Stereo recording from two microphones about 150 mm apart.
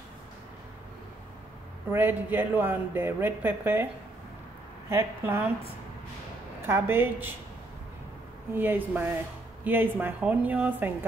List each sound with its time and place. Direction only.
1.9 s speech: 15° right (ahead or behind)
4.8 s speech: 15° right (ahead or behind)
6.6 s speech: 15° right (ahead or behind)
8.5 s speech: 15° right (ahead or behind)